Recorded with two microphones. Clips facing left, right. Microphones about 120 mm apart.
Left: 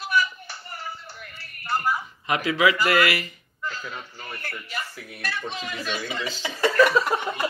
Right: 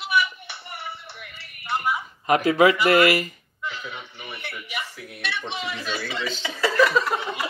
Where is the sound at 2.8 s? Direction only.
25° right (ahead or behind).